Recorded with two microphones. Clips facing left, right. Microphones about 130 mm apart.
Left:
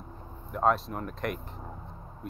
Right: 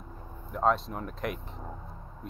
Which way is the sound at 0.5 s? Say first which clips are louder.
Left 1 dB; centre (ahead or behind).